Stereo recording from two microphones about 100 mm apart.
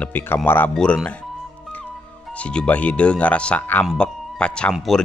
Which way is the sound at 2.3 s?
10° left (ahead or behind).